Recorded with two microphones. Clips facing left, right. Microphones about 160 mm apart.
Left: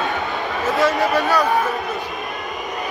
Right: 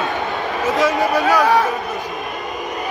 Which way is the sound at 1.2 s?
85° right.